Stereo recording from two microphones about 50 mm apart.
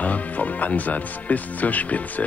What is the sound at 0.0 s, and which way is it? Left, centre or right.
Speech, left.